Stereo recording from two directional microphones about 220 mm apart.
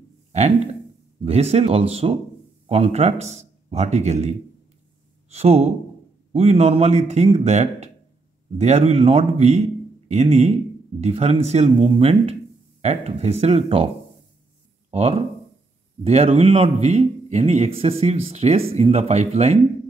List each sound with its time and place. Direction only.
0.3 s a man's voice: 30° right (ahead or behind)
5.3 s a man's voice: 30° right (ahead or behind)
14.9 s a man's voice: 30° right (ahead or behind)